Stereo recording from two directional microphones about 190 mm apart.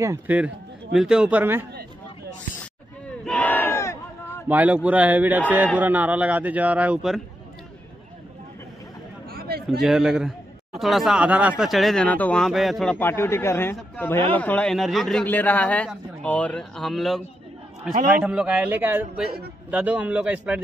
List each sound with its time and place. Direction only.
0.0 s speech: 10° right (ahead or behind)
3.3 s battle cry: 10° left (ahead or behind)
4.5 s speech: 10° right (ahead or behind)
9.3 s a sound: 55° right (ahead or behind)
9.8 s a man's voice: 5° right (ahead or behind)
13.0 s a man's voice: 10° left (ahead or behind); by 20.6 s 5° right (ahead or behind)